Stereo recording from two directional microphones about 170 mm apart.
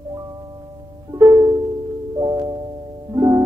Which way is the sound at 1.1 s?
20° right (ahead or behind).